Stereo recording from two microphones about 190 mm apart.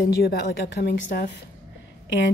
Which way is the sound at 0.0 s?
60° left (ahead or behind).